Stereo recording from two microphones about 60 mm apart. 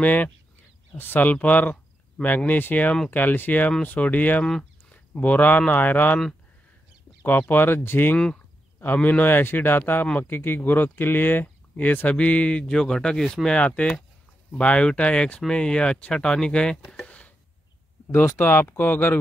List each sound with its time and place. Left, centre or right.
0.0 s a man's voice: left
4.5 s a sound: centre
4.9 s a man's voice: left
7.2 s a man's voice: left; by 16.8 s centre
17.0 s a sound: left
18.0 s a man's voice: left